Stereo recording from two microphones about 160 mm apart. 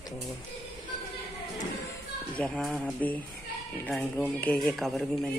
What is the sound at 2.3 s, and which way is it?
A man's voice, 5° left (ahead or behind).